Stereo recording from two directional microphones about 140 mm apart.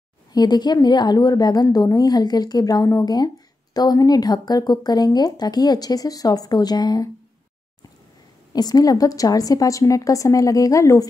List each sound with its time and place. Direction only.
0.3 s speech: 30° left (ahead or behind)
8.5 s speech: 25° left (ahead or behind)